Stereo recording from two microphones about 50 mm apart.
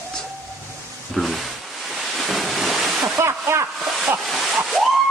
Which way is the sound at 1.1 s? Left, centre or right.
Centre.